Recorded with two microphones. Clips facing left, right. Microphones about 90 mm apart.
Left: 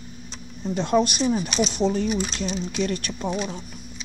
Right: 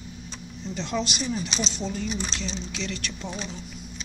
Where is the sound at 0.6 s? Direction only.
50° left (ahead or behind).